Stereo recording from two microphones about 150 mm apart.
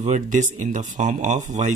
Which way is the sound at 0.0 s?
50° right (ahead or behind).